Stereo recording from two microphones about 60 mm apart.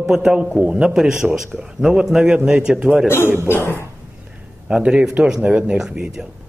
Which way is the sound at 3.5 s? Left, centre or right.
Left.